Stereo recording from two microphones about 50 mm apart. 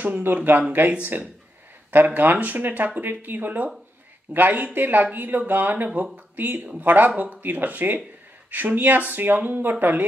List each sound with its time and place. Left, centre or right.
0.0 s speech: right
1.9 s speech: right